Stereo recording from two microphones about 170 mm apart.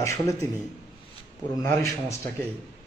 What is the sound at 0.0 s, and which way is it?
Speech, 15° left (ahead or behind).